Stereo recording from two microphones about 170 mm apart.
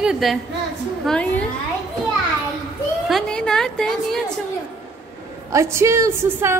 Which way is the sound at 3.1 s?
5° left (ahead or behind).